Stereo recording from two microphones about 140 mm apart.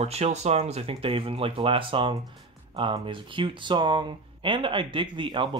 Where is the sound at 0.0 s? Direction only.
50° right (ahead or behind).